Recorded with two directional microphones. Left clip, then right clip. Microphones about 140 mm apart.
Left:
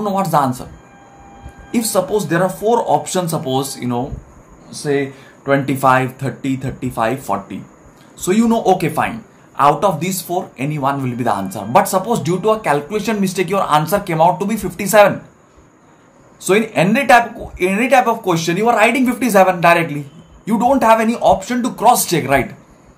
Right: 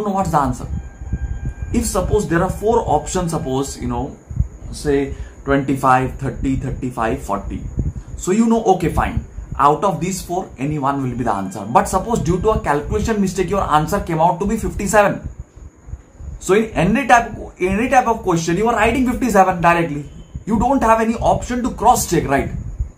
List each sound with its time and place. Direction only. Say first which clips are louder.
0.0 s speech: left 2 dB; 35° left (ahead or behind)
1.7 s speech: left 2 dB; 40° left (ahead or behind)
16.4 s speech: left 2 dB; 40° left (ahead or behind)